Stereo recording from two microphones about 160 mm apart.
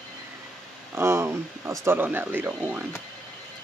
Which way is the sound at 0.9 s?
15° right (ahead or behind).